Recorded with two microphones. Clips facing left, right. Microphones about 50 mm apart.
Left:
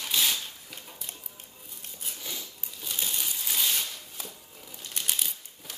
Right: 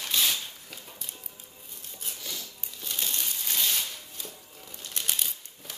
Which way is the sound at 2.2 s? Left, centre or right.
Centre.